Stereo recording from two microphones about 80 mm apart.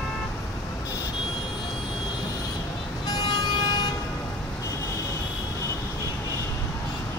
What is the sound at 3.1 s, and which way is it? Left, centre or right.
Vehicle, left.